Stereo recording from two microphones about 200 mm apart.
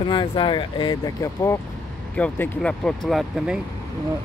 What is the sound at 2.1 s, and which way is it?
Speech, 5° left (ahead or behind).